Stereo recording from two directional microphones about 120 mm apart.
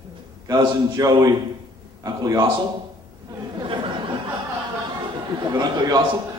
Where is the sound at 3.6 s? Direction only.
45° right (ahead or behind).